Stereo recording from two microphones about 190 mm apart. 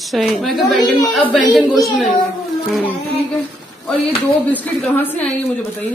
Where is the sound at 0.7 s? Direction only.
20° left (ahead or behind).